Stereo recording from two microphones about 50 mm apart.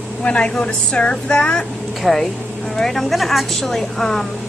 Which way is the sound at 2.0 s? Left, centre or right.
Centre.